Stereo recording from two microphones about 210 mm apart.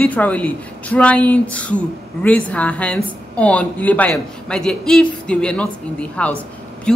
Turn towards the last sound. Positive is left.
turn(degrees=5)  # may be behind; listen again after turning